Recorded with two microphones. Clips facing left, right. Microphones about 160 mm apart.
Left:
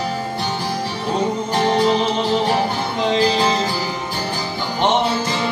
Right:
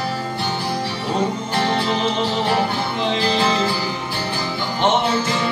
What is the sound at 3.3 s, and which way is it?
Music, 40° left (ahead or behind).